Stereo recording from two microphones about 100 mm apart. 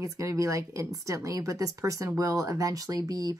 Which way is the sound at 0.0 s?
30° right (ahead or behind).